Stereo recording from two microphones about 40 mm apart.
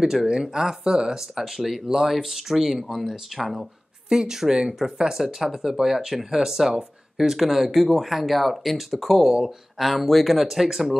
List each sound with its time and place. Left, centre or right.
0.0 s speech: centre